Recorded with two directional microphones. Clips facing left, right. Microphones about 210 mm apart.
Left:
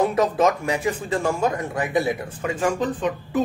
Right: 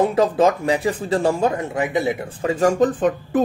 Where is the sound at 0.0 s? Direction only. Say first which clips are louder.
Right 3 dB; 30° right (ahead or behind).